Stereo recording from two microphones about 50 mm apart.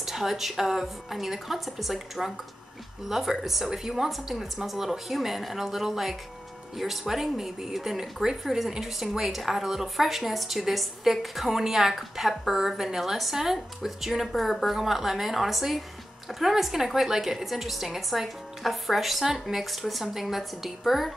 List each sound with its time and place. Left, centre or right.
0.0 s speech: centre